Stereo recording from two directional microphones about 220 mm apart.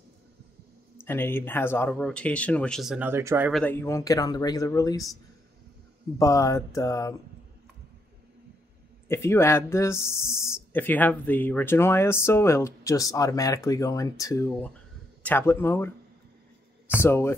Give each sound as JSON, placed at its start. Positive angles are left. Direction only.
{"t": 1.0, "sound": "speech", "side_deg": 10}
{"t": 3.6, "sound": "speech", "side_deg": 10}
{"t": 6.1, "sound": "speech", "side_deg": 15}
{"t": 9.0, "sound": "speech", "side_deg": 10}
{"t": 17.0, "sound": "speech", "side_deg": 10}